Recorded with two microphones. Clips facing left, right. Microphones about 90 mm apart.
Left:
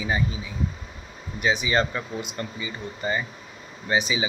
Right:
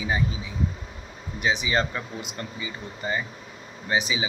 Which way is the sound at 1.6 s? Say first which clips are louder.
Left 2 dB; 5° right (ahead or behind).